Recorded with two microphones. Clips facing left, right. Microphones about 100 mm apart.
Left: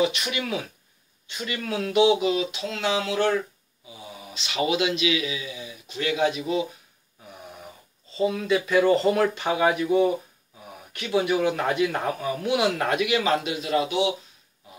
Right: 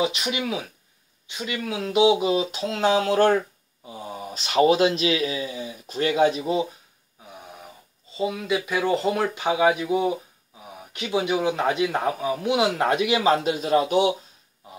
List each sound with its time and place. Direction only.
0.0 s speech: 20° right (ahead or behind)
2.5 s speech: 45° right (ahead or behind)
8.2 s speech: 10° right (ahead or behind); by 14.1 s 45° right (ahead or behind)